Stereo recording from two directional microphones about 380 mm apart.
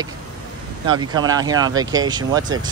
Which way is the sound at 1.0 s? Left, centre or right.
Centre.